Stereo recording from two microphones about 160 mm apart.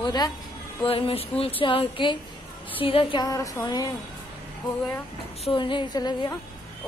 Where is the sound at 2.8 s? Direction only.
30° left (ahead or behind).